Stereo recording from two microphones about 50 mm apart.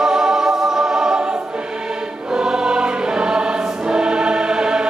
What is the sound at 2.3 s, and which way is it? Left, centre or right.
Choir, centre.